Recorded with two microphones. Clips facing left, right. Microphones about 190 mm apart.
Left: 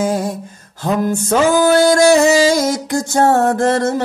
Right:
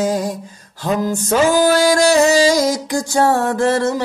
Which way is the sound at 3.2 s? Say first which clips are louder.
Left 2 dB; 45° left (ahead or behind).